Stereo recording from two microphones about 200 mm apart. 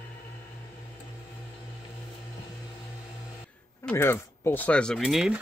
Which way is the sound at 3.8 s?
10° left (ahead or behind).